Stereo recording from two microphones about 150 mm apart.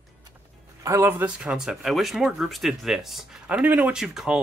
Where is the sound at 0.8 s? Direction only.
20° right (ahead or behind).